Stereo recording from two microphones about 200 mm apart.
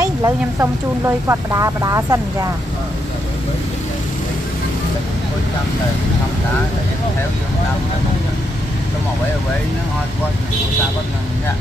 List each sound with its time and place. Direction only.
0.0 s speech: 15° right (ahead or behind)